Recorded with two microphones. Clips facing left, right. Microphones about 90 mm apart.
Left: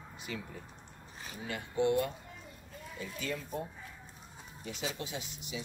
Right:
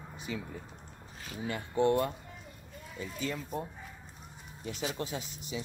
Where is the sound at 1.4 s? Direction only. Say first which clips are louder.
Right 3 dB; 40° right (ahead or behind).